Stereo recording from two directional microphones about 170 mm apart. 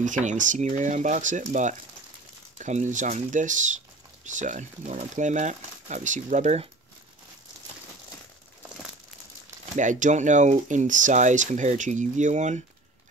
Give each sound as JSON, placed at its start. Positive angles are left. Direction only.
{"t": 0.0, "sound": "speech", "side_deg": -45}
{"t": 9.8, "sound": "speech", "side_deg": -45}